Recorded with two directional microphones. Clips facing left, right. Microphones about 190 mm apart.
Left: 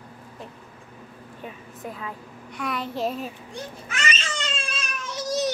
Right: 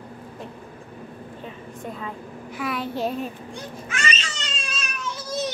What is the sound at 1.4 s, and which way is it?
A child's voice, 5° left (ahead or behind).